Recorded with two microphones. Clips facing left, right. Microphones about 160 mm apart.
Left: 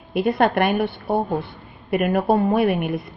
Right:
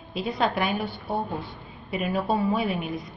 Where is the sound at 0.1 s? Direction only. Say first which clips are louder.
Left 7 dB; 60° left (ahead or behind).